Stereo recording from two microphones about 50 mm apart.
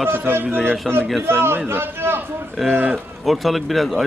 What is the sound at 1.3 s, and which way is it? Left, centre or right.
Speech, right.